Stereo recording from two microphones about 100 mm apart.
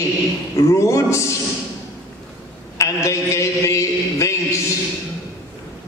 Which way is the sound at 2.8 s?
30° left (ahead or behind).